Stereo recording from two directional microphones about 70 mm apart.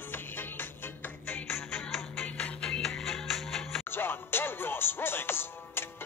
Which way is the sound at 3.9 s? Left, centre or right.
Left.